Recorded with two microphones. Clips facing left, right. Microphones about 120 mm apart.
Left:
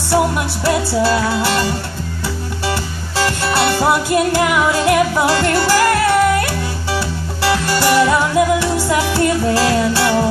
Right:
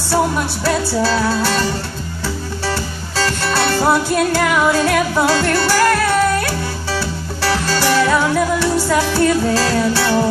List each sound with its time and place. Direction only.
0.7 s music: 20° left (ahead or behind)
3.2 s music: 20° left (ahead or behind)